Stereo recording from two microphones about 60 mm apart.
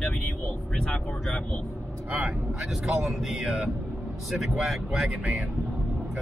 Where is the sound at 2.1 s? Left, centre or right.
Right.